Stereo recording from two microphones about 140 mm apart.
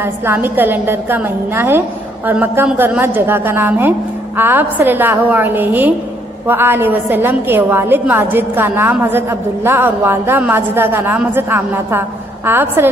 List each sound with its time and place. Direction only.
0.0 s a woman's voice: 15° right (ahead or behind)